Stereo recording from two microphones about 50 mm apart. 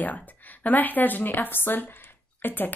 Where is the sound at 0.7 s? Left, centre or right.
Left.